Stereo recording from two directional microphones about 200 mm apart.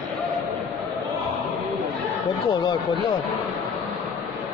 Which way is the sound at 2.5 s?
20° left (ahead or behind).